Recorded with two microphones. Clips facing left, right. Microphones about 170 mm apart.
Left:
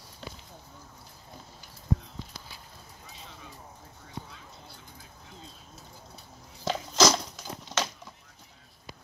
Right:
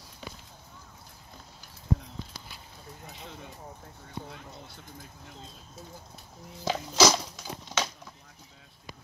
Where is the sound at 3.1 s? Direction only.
60° right (ahead or behind).